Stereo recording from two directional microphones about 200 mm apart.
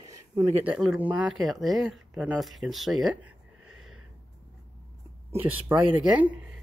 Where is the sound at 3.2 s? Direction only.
90° right.